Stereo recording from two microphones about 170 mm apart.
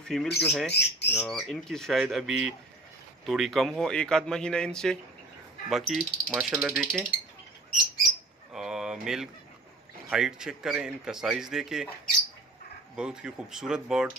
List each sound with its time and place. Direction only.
0.0 s speech: 5° left (ahead or behind)
0.7 s speech: 80° left
1.1 s speech: centre (ahead or behind)
8.5 s a sound: 5° right (ahead or behind)
10.0 s speech: 5° right (ahead or behind)
12.9 s speech: 5° right (ahead or behind)